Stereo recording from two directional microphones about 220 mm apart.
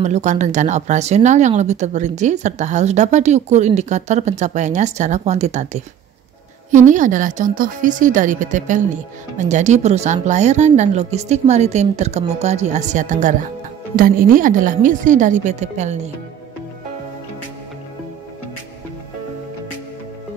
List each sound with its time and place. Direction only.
0.0 s speech: 30° right (ahead or behind)